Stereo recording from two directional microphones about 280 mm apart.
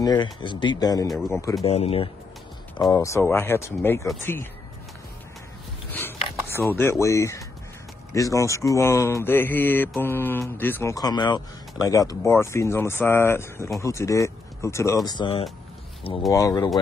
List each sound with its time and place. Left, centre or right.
0.0 s speech: centre
1.0 s speech: centre
1.6 s speech: left
5.9 s a sound: centre
8.1 s speech: centre